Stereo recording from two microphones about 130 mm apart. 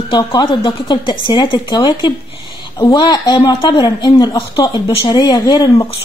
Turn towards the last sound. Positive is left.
turn(degrees=30)  # may be behind; listen again after turning